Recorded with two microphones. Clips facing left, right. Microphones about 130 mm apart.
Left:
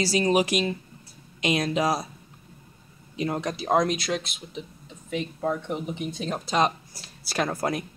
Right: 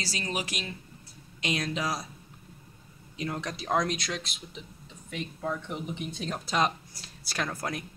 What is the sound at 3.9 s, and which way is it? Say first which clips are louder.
Speech: left 6 dB; 5° left (ahead or behind).